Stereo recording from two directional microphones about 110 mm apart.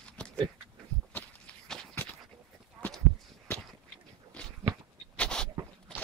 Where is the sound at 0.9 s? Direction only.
25° right (ahead or behind).